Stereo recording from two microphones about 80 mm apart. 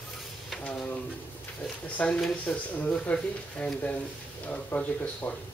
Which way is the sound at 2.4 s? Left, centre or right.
Centre.